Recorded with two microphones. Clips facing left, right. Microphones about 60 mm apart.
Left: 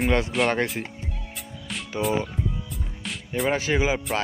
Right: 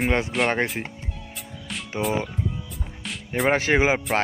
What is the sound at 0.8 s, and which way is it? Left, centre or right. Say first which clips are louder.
Speech: right 1 dB; centre.